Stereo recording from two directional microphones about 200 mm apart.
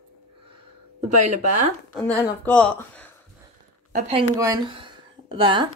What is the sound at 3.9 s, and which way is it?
Speech, 30° right (ahead or behind).